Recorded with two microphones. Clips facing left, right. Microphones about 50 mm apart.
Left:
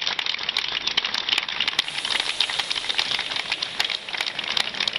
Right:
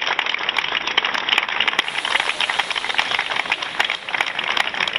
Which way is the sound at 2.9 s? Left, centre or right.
Right.